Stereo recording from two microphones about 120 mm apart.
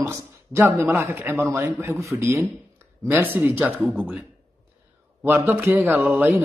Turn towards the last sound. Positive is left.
turn(degrees=-15)  # may be behind; listen again after turning